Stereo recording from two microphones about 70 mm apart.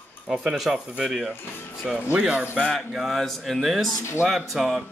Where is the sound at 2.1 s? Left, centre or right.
Centre.